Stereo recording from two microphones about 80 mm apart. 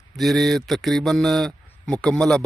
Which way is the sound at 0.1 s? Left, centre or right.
Centre.